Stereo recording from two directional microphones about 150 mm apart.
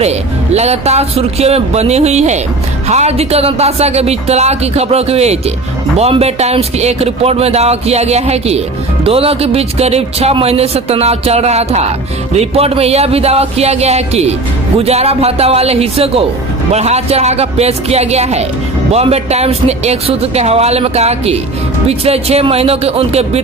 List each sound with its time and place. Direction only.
0.0 s speech: 45° right (ahead or behind)